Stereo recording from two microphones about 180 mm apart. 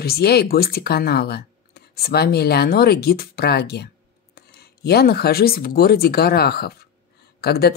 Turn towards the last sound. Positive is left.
turn(degrees=60)  # may be behind; listen again after turning